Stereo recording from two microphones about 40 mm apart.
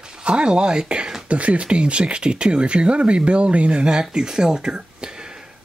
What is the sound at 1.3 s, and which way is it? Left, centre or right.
Speech, right.